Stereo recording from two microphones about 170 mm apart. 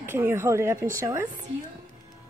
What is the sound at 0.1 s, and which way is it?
A woman's voice, 15° right (ahead or behind).